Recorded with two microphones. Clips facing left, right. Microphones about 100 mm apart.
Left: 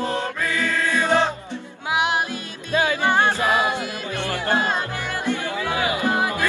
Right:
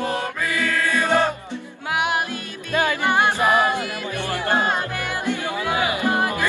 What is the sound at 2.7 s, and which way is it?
Music, 55° right (ahead or behind).